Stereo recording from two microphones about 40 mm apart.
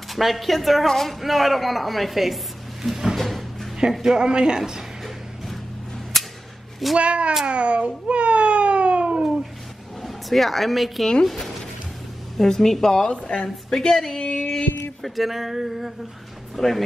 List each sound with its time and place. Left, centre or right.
0.1 s a sound: centre
0.8 s a woman's voice: centre
3.2 s music: centre
4.0 s a man's voice: centre
7.0 s speech: right
7.4 s a sound: right
10.0 s speech: centre
13.3 s a woman's voice: left
13.7 s speech: centre
14.1 s female singing: left
15.0 s a sound: centre